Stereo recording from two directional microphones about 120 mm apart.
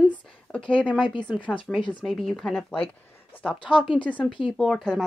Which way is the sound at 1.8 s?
45° left (ahead or behind).